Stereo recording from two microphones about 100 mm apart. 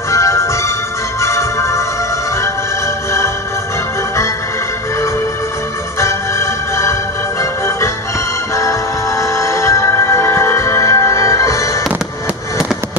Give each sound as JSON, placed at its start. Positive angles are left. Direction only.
{"t": 0.1, "sound": "music", "side_deg": 30}
{"t": 5.9, "sound": "music", "side_deg": 25}